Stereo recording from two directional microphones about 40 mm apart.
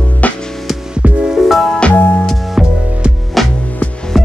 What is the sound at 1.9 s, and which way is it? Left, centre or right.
Music, left.